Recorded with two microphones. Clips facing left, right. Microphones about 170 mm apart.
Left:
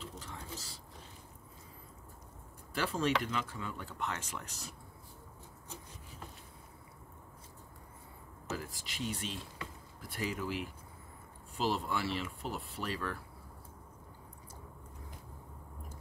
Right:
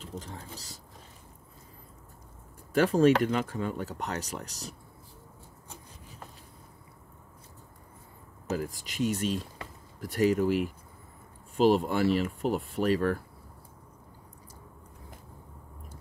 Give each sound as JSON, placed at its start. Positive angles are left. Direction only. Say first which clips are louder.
{"t": 0.0, "sound": "vehicle", "louder": "right 5 dB", "side_deg": -40}
{"t": 2.7, "sound": "speech", "louder": "right 11 dB", "side_deg": -45}
{"t": 8.5, "sound": "speech", "louder": "right 9 dB", "side_deg": -40}